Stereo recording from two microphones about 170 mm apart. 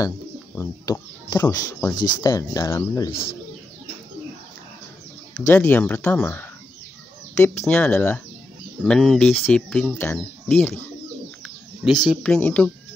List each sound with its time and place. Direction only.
0.6 s speech: 20° left (ahead or behind)
5.5 s speech: 10° left (ahead or behind)